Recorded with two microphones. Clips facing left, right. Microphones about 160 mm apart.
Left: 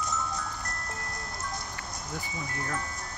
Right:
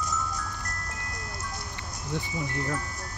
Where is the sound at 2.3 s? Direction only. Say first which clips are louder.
Right 3 dB; 20° right (ahead or behind).